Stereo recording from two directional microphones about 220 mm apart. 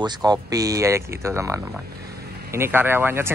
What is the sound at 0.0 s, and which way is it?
Speech, 20° right (ahead or behind).